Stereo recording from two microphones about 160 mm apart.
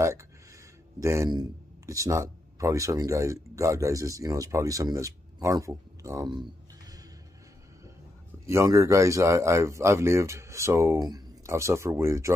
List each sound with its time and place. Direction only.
0.0 s speech: 15° right (ahead or behind)
8.5 s speech: 20° right (ahead or behind)